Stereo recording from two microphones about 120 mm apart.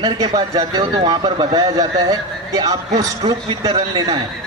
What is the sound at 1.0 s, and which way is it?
Speech, 45° right (ahead or behind).